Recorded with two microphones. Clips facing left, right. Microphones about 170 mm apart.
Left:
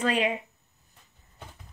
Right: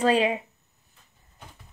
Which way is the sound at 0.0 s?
30° right (ahead or behind).